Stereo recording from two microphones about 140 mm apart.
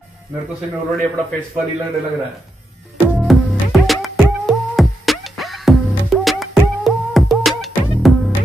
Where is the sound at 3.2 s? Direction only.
Centre (ahead or behind).